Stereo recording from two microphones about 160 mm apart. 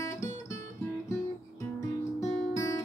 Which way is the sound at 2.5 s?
20° left (ahead or behind).